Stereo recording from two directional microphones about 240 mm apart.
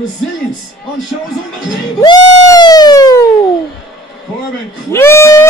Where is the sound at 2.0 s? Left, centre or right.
Centre.